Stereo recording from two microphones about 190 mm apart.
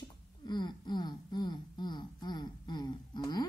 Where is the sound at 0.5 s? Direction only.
25° left (ahead or behind).